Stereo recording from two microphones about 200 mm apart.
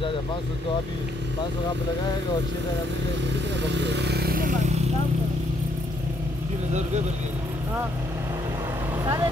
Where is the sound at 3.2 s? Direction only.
60° right (ahead or behind); by 4.8 s 40° right (ahead or behind).